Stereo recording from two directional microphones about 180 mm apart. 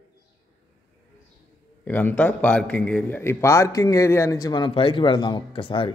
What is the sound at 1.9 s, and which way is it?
A man's voice, 10° left (ahead or behind).